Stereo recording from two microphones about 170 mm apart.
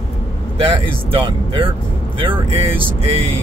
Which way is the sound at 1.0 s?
30° right (ahead or behind).